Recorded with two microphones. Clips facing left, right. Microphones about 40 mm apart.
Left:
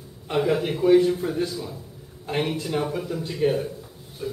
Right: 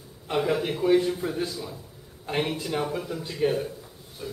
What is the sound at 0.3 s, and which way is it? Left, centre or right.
Speech, centre.